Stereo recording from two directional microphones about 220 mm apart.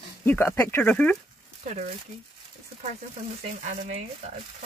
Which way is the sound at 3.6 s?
30° right (ahead or behind).